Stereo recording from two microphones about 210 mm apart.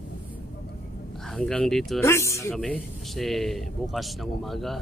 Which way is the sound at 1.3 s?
5° left (ahead or behind).